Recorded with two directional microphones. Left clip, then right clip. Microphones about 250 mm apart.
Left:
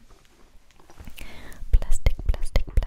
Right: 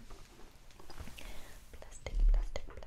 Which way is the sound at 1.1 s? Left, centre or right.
Left.